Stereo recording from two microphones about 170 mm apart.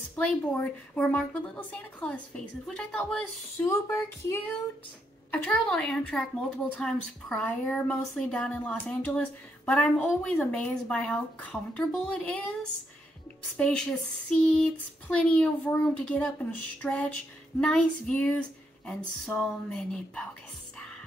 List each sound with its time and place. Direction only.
0.1 s speech: 10° left (ahead or behind)
3.6 s a woman's voice: 15° left (ahead or behind)
13.6 s a woman's voice: 5° left (ahead or behind)